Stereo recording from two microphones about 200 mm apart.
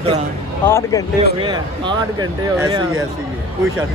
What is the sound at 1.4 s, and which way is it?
Speech, 20° right (ahead or behind).